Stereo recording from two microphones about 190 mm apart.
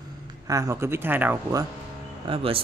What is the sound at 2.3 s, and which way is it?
Speech, 30° right (ahead or behind).